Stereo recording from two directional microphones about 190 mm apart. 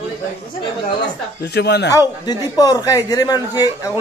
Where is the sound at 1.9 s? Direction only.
20° left (ahead or behind).